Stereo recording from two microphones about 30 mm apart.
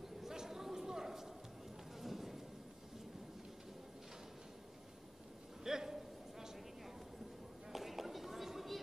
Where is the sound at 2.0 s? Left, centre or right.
Centre.